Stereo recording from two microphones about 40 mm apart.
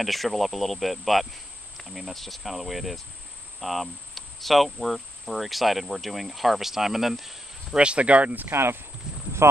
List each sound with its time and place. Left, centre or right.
0.0 s speech: centre
7.7 s speech: right
8.5 s speech: right
9.1 s boat: centre